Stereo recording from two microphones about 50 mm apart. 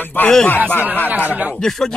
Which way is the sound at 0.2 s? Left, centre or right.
Left.